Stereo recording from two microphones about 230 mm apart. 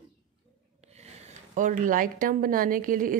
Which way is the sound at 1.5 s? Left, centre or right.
Right.